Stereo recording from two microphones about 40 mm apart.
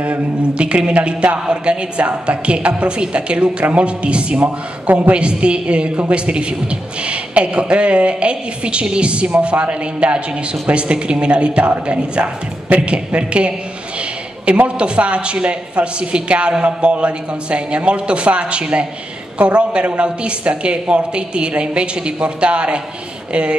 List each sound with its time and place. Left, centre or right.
0.0 s mantra: right
1.5 s a man's voice: right
14.5 s mantra: right
14.8 s a man's voice: right